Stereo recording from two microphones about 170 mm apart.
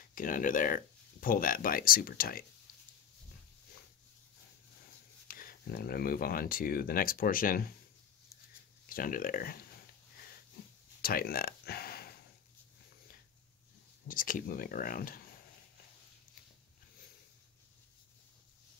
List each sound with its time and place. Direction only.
0.1 s speech: 50° left (ahead or behind)
5.3 s speech: 60° left (ahead or behind)
8.8 s speech: 55° left (ahead or behind)
11.0 s a sound: 60° left (ahead or behind)
14.0 s speech: 55° left (ahead or behind)